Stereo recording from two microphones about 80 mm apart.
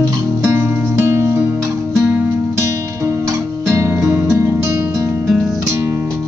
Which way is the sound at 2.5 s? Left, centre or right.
Right.